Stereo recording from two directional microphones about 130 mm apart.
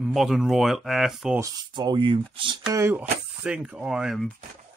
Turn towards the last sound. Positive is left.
turn(degrees=-5)  # may be behind; listen again after turning